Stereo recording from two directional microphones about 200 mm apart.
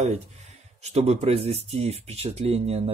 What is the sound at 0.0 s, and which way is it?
Speech, 35° right (ahead or behind).